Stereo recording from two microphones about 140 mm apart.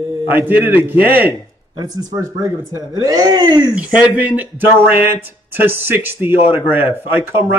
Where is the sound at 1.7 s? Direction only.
30° right (ahead or behind).